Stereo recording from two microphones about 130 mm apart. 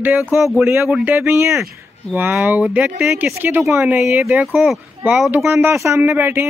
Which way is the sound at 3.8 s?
5° right (ahead or behind).